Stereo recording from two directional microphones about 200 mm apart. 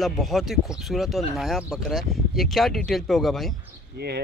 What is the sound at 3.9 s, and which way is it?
Speech, 55° right (ahead or behind).